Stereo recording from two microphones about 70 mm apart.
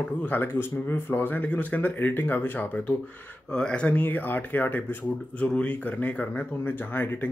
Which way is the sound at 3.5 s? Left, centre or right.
Centre.